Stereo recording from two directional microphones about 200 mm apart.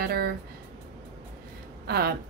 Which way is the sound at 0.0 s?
50° right (ahead or behind).